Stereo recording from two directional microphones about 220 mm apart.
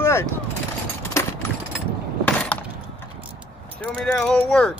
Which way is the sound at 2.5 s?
5° left (ahead or behind).